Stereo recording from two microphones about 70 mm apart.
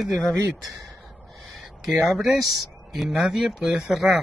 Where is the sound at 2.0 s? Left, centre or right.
Centre.